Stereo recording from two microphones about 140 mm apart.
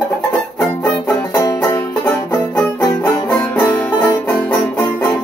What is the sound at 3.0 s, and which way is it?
Music, 10° left (ahead or behind).